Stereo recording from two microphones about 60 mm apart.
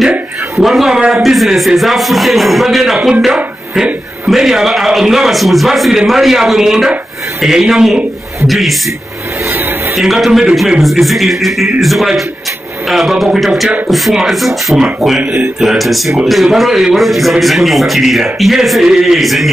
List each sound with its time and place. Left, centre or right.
0.6 s a man's voice: centre
9.5 s a sound: right
9.9 s a man's voice: centre